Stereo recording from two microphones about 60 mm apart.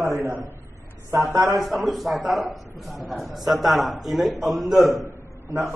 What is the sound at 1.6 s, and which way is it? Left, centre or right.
A man's voice, centre.